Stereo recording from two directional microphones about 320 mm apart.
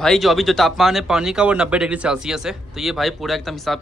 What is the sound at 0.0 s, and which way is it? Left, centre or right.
A man's voice, centre.